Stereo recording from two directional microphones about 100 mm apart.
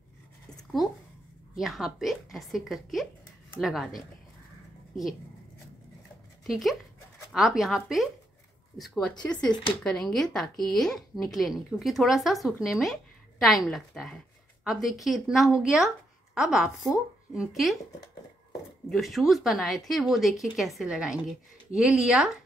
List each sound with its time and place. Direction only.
1.5 s a woman's voice: 5° right (ahead or behind)
6.4 s a woman's voice: centre (ahead or behind)
9.4 s speech: 50° left (ahead or behind)
9.8 s a woman's voice: 5° left (ahead or behind)
18.9 s a woman's voice: centre (ahead or behind)